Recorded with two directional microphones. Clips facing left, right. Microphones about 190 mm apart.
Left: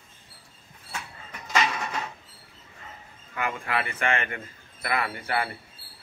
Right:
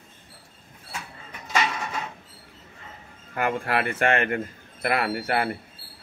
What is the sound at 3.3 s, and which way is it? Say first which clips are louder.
A man's voice: right 4 dB; 45° right (ahead or behind).